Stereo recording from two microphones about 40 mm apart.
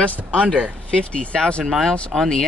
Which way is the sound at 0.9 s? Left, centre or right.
Left.